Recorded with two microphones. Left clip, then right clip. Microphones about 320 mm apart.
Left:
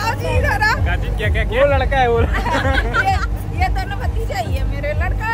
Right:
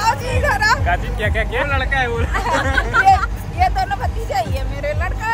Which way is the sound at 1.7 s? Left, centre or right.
Left.